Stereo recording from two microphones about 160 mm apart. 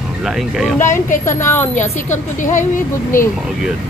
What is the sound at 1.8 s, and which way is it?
A woman's voice, 50° left (ahead or behind).